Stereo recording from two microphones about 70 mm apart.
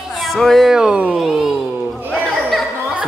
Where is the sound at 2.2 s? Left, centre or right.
Centre.